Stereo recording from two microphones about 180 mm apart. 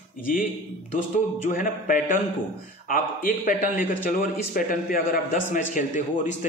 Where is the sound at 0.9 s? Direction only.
50° left (ahead or behind).